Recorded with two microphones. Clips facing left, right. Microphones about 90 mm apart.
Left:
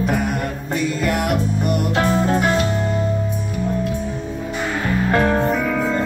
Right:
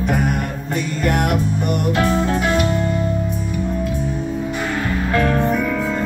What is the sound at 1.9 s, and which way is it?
Music, 30° left (ahead or behind).